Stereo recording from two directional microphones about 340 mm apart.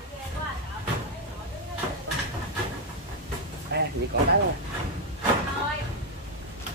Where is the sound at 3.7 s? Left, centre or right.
Right.